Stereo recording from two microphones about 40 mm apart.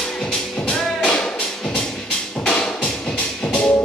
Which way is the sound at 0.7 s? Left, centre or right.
Left.